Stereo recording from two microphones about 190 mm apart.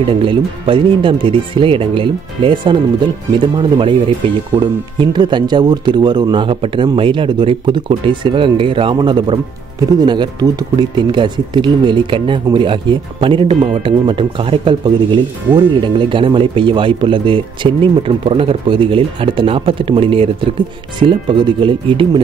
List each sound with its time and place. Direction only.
0.2 s speech: 25° right (ahead or behind)
5.0 s speech: 25° right (ahead or behind)